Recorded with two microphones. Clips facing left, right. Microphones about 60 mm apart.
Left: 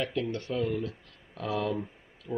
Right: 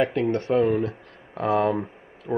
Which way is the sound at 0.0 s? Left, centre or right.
Right.